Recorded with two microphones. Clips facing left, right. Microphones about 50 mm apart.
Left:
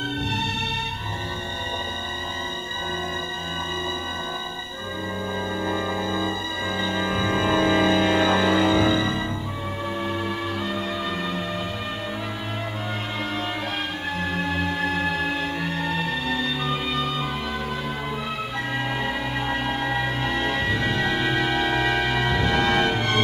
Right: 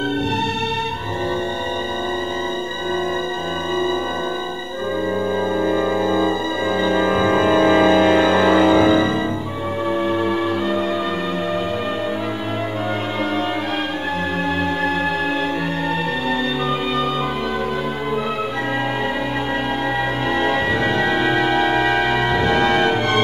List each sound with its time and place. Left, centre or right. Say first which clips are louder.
5.6 s music: right 7 dB; centre
20.2 s music: right 7 dB; right